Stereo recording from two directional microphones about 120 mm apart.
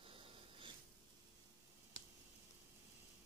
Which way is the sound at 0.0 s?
50° right (ahead or behind).